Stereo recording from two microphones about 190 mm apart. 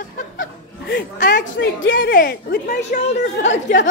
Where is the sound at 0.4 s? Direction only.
65° left (ahead or behind).